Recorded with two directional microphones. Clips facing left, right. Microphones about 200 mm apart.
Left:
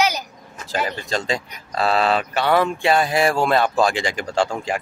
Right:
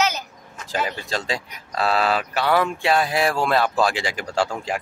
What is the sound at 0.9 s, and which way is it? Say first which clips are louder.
Speech: left 3 dB; 10° right (ahead or behind).